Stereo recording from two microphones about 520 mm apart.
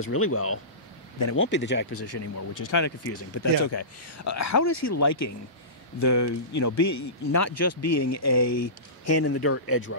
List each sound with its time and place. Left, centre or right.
0.0 s speech: left